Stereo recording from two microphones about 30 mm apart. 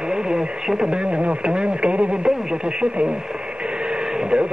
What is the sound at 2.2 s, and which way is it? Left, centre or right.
Speech, right.